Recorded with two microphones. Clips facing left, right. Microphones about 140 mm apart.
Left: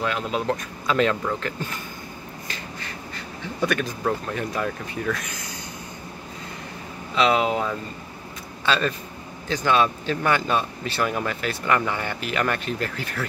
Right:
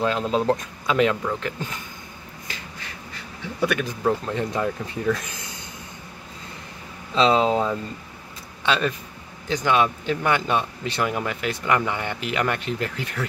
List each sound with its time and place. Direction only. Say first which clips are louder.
0.0 s speech: right 4 dB; 30° right (ahead or behind)
0.8 s speech: right 1 dB; 15° right (ahead or behind)
3.6 s speech: right 1 dB; 10° right (ahead or behind)
4.3 s speech: right 2 dB; 25° right (ahead or behind)
7.2 s speech: right 2 dB; 30° right (ahead or behind)
8.6 s a man's voice: even; 15° right (ahead or behind)